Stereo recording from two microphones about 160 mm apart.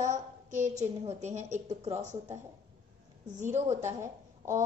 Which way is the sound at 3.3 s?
45° right (ahead or behind).